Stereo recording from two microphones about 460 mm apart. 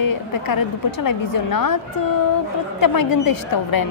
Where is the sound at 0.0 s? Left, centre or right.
Left.